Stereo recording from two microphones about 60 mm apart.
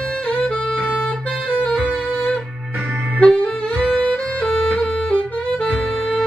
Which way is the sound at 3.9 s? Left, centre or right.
Centre.